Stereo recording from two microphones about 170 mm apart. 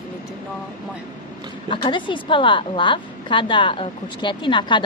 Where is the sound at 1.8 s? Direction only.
30° left (ahead or behind).